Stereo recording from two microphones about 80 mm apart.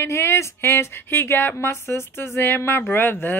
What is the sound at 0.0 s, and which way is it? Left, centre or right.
Speech, left.